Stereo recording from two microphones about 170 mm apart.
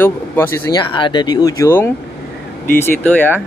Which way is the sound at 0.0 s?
15° left (ahead or behind).